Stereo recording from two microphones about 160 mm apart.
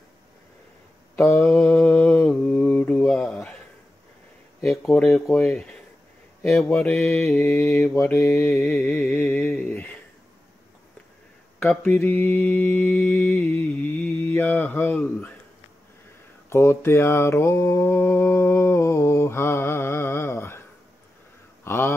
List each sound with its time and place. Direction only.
1.1 s mantra: 15° left (ahead or behind)
1.4 s mantra: centre (ahead or behind)
4.6 s mantra: centre (ahead or behind)
8.1 s mantra: 15° left (ahead or behind)
9.5 s speech: 10° left (ahead or behind)
11.6 s mantra: 15° left (ahead or behind)
16.4 s mantra: 15° left (ahead or behind)
21.6 s speech: 15° left (ahead or behind)